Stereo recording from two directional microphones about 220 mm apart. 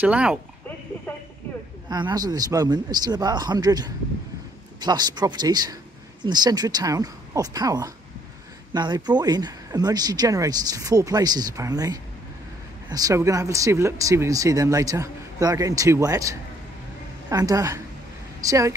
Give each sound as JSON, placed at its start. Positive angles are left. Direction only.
{"t": 0.0, "sound": "speech", "side_deg": -5}
{"t": 1.9, "sound": "speech", "side_deg": -20}